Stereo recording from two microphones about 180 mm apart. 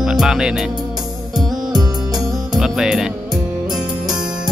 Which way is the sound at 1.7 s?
20° right (ahead or behind).